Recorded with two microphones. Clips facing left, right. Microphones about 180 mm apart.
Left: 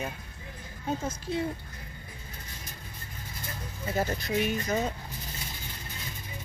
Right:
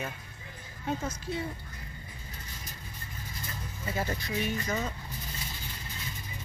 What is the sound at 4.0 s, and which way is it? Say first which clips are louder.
Speech: left 4 dB; 40° left (ahead or behind).